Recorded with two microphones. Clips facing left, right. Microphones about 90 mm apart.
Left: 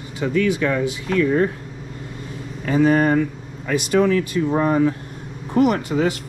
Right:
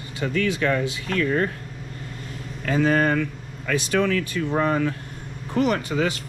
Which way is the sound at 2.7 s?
40° left (ahead or behind).